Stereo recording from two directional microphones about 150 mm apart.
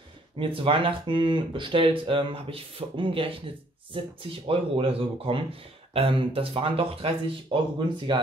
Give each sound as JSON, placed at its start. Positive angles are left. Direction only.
{"t": 0.4, "sound": "speech", "side_deg": -35}